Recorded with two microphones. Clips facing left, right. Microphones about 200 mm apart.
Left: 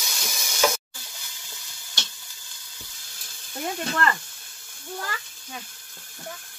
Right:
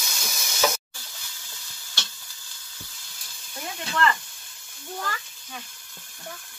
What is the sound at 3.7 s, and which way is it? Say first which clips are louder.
Speech: right 2 dB; 45° left (ahead or behind).